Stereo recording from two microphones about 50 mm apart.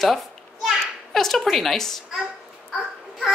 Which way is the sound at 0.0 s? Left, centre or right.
Centre.